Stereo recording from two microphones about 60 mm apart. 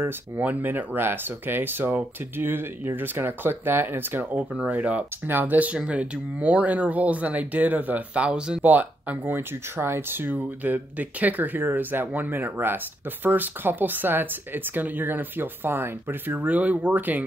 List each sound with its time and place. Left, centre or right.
0.4 s speech: right; by 8.6 s centre
8.6 s speech: right